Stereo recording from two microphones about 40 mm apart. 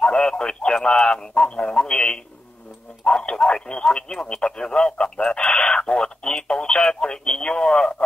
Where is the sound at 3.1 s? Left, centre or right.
Left.